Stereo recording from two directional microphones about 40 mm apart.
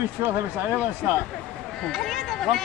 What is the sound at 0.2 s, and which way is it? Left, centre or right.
Speech, right.